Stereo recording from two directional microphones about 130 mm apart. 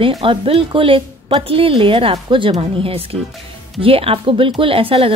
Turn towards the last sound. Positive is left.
turn(degrees=-45)  # may be behind; listen again after turning